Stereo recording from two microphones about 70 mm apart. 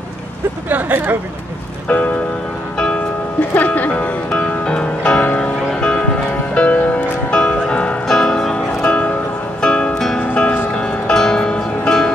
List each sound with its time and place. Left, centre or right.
0.7 s speech: right
3.3 s music: left